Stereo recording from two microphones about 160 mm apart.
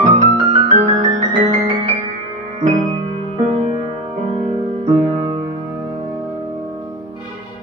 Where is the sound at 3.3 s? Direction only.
40° right (ahead or behind).